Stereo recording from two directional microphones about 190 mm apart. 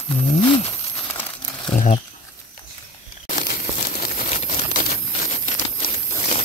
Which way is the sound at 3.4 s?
50° left (ahead or behind).